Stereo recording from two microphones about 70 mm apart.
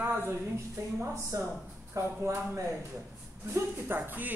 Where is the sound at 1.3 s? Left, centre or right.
Right.